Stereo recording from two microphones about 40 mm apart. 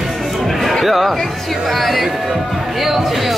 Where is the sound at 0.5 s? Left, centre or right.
Centre.